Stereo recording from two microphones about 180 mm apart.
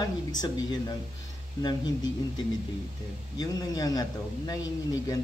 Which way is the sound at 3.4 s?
20° left (ahead or behind).